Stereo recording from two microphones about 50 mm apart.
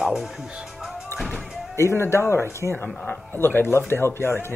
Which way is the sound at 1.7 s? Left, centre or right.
Left.